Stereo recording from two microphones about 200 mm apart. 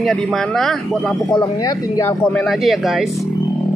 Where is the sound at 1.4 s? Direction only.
20° left (ahead or behind).